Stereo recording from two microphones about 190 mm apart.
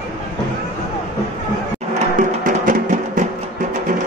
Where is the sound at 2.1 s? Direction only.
45° right (ahead or behind).